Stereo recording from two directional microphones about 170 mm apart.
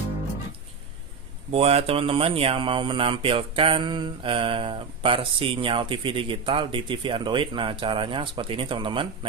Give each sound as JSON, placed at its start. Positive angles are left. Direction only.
{"t": 1.5, "sound": "speech", "side_deg": -35}